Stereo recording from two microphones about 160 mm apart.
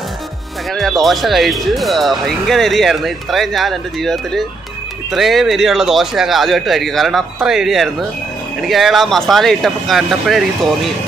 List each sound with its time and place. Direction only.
0.7 s speech: centre (ahead or behind)